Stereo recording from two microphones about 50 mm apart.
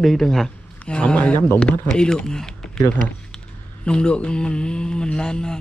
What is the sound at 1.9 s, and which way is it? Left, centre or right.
Speech, centre.